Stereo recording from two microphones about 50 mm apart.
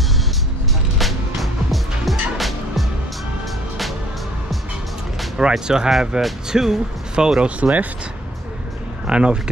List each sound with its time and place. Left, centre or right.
0.9 s music: centre
5.4 s speech: centre; by 7.9 s right
9.0 s speech: centre